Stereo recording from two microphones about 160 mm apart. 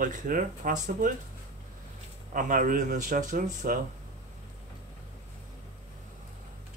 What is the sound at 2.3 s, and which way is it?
Speech, 60° right (ahead or behind).